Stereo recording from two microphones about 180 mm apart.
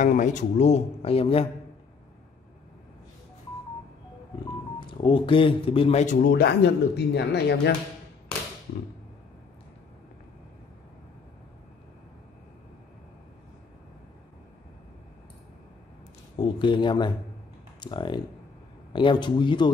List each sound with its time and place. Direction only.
0.0 s a man's voice: 45° left (ahead or behind)
4.7 s speech: 25° left (ahead or behind)
6.2 s speech: 65° left (ahead or behind)
16.3 s speech: 25° left (ahead or behind)